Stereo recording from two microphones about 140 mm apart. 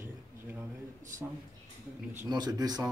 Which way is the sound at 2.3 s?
30° right (ahead or behind).